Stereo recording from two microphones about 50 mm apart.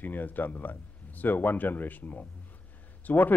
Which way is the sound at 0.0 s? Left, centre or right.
Left.